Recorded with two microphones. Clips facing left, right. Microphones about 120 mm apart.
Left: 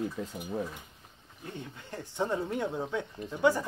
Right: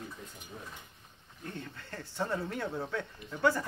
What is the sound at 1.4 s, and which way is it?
Speech, 15° left (ahead or behind).